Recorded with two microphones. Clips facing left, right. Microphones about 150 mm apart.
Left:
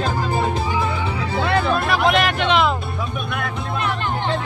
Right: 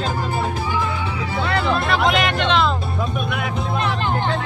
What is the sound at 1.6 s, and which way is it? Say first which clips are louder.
Hubbub: even; 5° left (ahead or behind).